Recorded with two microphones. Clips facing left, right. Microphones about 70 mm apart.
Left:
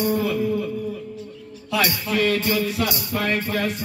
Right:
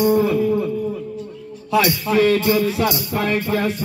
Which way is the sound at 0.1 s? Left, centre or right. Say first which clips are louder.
Right 6 dB; right.